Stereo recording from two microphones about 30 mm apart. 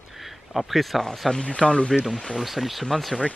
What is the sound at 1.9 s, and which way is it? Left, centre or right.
Speech, centre.